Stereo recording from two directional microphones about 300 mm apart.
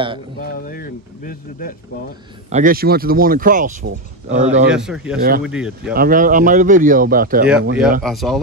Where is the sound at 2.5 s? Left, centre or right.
Right.